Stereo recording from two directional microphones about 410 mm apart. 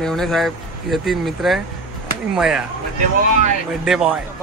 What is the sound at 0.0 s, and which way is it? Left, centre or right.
A man's voice, centre.